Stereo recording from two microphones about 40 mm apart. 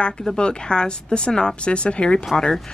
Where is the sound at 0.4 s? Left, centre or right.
Left.